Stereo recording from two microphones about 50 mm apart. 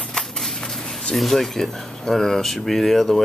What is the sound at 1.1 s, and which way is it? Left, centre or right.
Speech, centre.